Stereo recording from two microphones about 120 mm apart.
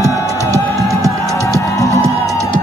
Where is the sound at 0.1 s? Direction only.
25° left (ahead or behind).